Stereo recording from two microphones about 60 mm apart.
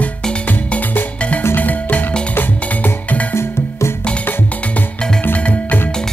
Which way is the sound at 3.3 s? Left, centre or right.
Left.